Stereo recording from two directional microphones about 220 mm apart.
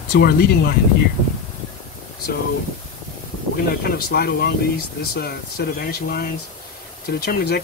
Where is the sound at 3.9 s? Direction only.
45° left (ahead or behind).